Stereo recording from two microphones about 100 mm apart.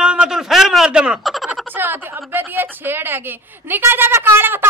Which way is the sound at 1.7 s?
20° right (ahead or behind).